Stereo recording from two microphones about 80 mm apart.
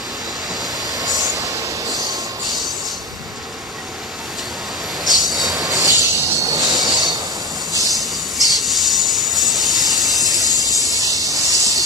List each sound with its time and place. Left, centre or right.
0.9 s train: right
2.4 s train: centre
5.0 s train: centre
5.5 s train: right
7.8 s train: centre
11.0 s a sound: right